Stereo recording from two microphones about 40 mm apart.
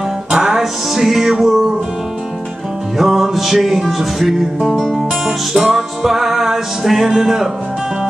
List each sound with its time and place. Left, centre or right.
0.3 s music: centre
3.0 s music: centre